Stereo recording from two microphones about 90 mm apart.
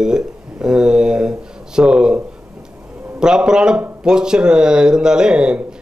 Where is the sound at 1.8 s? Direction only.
10° right (ahead or behind).